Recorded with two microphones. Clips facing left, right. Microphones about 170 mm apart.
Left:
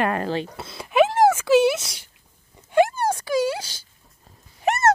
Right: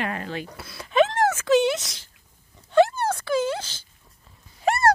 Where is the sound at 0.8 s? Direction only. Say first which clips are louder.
Left 3 dB; 10° left (ahead or behind).